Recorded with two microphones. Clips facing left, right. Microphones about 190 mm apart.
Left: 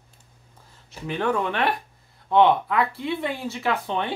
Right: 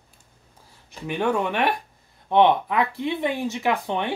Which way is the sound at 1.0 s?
15° right (ahead or behind).